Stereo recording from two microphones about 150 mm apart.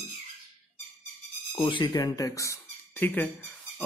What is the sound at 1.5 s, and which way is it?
Speech, 30° left (ahead or behind).